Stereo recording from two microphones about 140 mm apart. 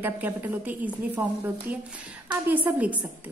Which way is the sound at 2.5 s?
10° right (ahead or behind).